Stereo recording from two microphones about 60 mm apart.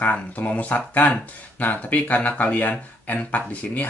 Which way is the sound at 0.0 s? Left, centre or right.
Left.